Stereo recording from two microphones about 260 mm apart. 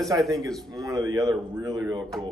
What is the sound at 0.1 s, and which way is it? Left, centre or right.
Speech, centre.